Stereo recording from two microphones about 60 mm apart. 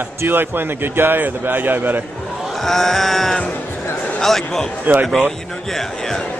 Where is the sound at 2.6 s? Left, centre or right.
Centre.